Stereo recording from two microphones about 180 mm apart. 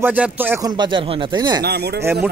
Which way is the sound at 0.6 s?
25° right (ahead or behind).